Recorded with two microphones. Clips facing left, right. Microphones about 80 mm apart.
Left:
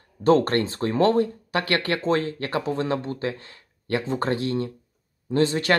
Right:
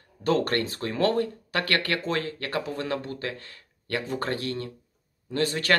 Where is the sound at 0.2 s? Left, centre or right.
Left.